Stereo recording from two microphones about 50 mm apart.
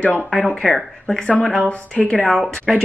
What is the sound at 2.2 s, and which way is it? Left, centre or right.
Speech, centre.